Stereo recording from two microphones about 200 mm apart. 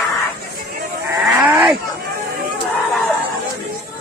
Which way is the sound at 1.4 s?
Centre (ahead or behind).